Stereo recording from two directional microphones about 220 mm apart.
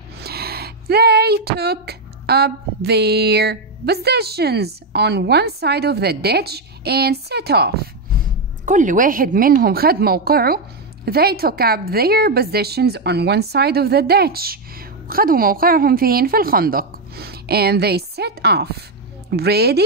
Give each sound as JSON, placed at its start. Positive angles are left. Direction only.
{"t": 0.2, "sound": "a woman's voice", "side_deg": -45}
{"t": 8.6, "sound": "a woman's voice", "side_deg": -35}